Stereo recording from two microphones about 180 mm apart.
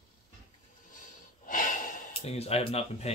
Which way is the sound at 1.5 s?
45° left (ahead or behind).